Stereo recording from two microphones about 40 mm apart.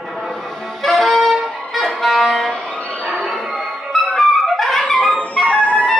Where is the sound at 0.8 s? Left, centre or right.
Centre.